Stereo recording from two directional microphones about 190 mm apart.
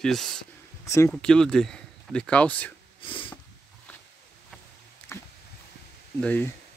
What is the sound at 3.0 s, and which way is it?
Sniff, 25° left (ahead or behind).